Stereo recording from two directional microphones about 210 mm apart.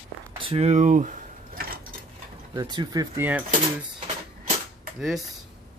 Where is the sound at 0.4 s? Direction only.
30° right (ahead or behind).